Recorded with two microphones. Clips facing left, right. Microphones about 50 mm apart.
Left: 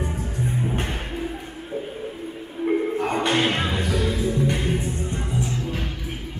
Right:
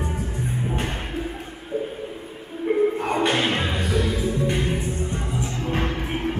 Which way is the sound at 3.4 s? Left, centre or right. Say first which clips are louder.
Left 1 dB; centre.